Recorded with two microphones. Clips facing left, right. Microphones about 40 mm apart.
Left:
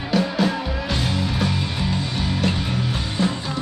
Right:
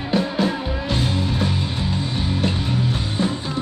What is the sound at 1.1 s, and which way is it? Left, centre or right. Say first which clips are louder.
Music: even; left.